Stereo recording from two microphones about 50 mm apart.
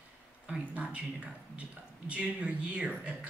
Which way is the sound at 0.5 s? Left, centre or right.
Right.